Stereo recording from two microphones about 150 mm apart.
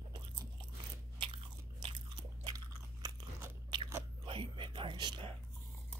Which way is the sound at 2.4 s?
25° right (ahead or behind).